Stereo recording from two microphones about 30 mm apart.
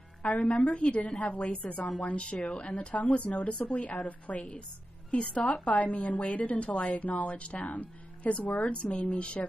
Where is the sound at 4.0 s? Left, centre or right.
Left.